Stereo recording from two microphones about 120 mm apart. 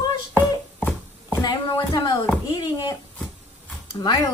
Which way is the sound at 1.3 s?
35° left (ahead or behind).